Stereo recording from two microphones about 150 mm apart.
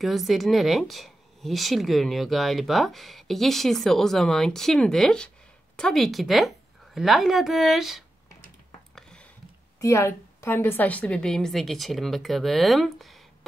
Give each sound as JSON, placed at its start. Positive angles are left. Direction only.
{"t": 0.0, "sound": "speech", "side_deg": 0}
{"t": 8.9, "sound": "a sound", "side_deg": 5}
{"t": 9.8, "sound": "speech", "side_deg": 20}